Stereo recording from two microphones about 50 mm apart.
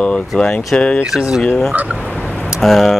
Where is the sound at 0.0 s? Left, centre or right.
Centre.